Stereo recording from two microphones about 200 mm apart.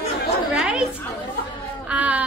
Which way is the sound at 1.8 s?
5° right (ahead or behind).